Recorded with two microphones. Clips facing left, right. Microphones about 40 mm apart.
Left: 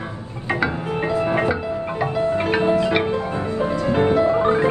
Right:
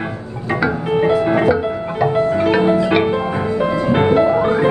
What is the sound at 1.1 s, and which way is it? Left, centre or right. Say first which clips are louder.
Music: right 4 dB; right.